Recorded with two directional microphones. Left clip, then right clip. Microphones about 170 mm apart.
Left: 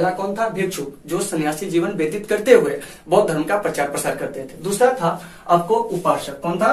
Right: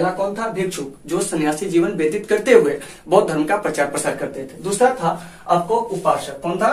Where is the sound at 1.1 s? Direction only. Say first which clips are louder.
Right 2 dB; 10° right (ahead or behind).